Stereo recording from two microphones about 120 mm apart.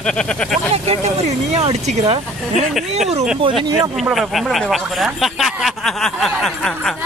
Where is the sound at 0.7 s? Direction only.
60° right (ahead or behind).